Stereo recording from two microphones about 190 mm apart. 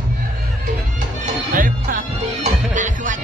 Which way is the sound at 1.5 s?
45° right (ahead or behind).